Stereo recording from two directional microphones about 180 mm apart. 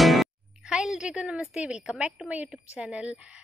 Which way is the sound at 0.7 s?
5° right (ahead or behind).